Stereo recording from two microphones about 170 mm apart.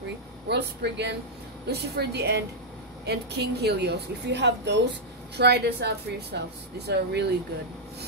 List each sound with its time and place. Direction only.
0.5 s a woman's voice: 80° right
5.4 s a woman's voice: 80° right